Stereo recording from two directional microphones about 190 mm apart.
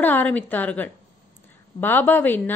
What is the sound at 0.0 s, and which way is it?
A woman's voice, 10° left (ahead or behind).